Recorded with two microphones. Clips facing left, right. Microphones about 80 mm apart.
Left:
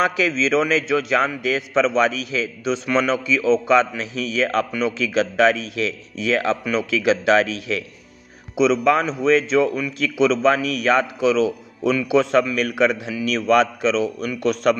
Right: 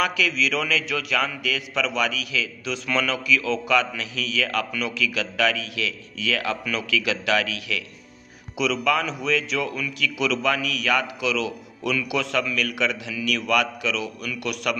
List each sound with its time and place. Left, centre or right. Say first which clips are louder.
0.0 s a man's voice: left 4 dB; left
8.5 s a man's voice: left 6 dB; left